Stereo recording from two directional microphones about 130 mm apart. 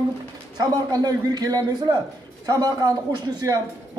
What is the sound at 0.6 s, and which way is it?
A man's voice, 30° right (ahead or behind).